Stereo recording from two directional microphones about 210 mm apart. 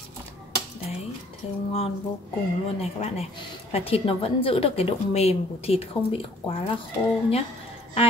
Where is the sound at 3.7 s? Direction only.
25° left (ahead or behind).